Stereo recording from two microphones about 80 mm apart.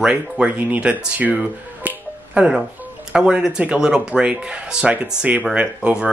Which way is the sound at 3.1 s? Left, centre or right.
Centre.